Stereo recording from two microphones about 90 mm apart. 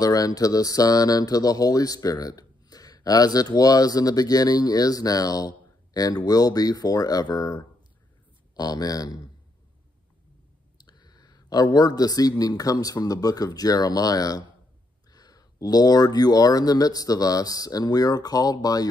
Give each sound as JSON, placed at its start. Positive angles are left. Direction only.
{"t": 0.0, "sound": "speech", "side_deg": 40}
{"t": 10.8, "sound": "speech", "side_deg": 50}